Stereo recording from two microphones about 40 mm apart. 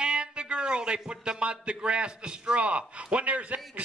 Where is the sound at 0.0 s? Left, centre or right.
Right.